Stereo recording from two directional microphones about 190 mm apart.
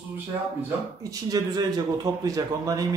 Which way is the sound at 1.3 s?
20° right (ahead or behind).